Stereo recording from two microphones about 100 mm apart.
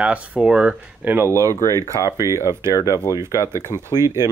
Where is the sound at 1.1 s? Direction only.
30° right (ahead or behind).